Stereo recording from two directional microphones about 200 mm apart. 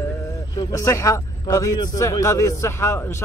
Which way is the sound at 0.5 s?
15° left (ahead or behind).